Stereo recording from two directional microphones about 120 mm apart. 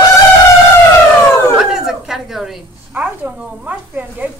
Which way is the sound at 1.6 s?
5° right (ahead or behind).